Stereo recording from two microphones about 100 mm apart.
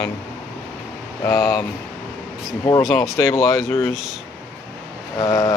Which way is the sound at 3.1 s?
25° left (ahead or behind).